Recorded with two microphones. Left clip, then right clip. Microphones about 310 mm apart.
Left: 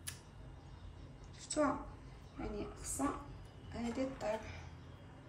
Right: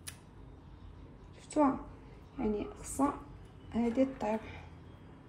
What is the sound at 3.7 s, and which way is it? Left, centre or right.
Speech, right.